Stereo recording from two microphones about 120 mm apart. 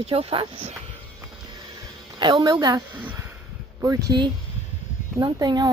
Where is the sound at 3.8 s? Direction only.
30° right (ahead or behind).